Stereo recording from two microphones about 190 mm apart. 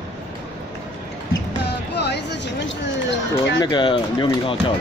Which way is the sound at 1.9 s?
60° left (ahead or behind).